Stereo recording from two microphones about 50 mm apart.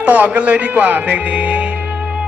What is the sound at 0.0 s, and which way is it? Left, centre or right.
Music, right.